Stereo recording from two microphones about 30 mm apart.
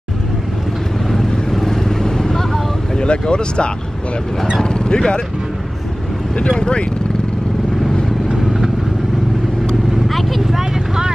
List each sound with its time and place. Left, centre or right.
1.5 s vehicle: centre
3.0 s speech: left
6.6 s speech: left
10.0 s vehicle: centre
10.6 s vehicle: right